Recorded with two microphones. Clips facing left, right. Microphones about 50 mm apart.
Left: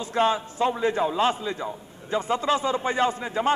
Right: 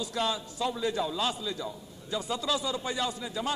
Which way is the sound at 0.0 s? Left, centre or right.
Left.